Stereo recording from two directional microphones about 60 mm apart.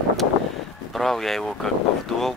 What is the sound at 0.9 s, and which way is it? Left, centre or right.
Speech, centre.